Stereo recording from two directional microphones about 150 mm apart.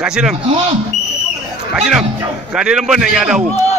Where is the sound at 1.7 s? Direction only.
5° right (ahead or behind).